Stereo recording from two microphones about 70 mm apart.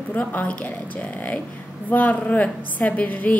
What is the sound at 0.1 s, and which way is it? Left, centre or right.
A woman's voice, left.